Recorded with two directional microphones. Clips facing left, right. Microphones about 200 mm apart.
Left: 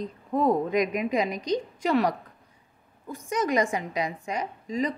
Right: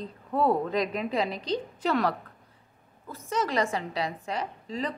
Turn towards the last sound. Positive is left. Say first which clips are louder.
# left 4 dB
turn(degrees=10)  # may be behind; listen again after turning